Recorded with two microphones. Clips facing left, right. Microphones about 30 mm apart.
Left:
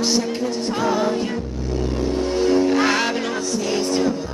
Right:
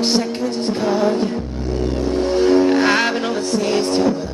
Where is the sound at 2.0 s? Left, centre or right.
Right.